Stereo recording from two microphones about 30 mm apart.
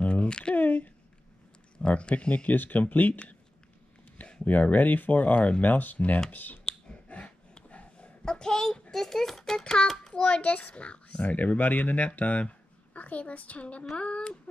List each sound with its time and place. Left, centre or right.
0.0 s a sound: left
0.6 s a sound: left
1.9 s speech: left
2.5 s speech: left
2.8 s speech: left
4.5 s speech: left
5.6 s speech: left
6.3 s speech: left
7.1 s a sound: left
8.3 s a sound: left
8.9 s a child's voice: centre
10.1 s a child's voice: left
11.2 s a woman's voice: left